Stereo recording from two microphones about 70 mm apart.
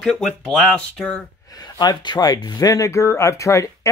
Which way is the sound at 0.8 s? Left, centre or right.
Centre.